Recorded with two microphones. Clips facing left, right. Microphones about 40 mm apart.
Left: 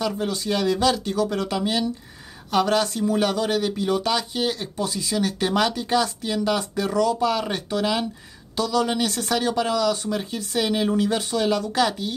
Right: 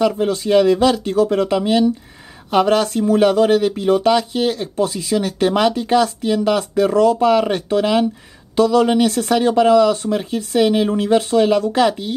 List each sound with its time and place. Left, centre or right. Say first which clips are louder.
0.0 s speech: right 8 dB; right
6.8 s speech: right 9 dB; right